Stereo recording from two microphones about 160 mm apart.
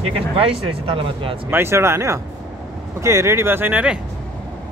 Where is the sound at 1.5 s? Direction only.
15° right (ahead or behind).